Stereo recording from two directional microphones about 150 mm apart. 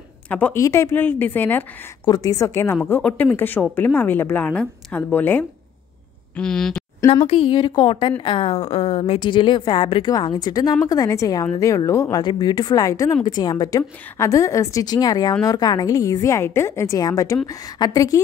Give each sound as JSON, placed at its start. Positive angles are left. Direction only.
{"t": 0.3, "sound": "a woman's voice", "side_deg": 10}
{"t": 2.0, "sound": "a woman's voice", "side_deg": 25}
{"t": 7.2, "sound": "a woman's voice", "side_deg": 35}